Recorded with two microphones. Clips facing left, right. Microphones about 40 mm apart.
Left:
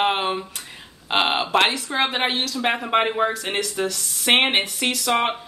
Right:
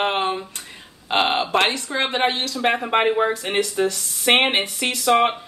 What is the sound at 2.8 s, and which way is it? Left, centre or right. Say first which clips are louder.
Speech: right 1 dB; centre.